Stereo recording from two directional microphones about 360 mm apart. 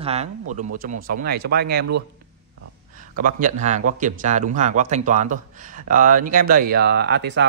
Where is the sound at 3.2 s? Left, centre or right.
Right.